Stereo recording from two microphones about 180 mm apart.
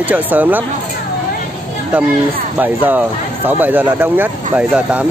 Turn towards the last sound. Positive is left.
turn(degrees=-5)  # may be behind; listen again after turning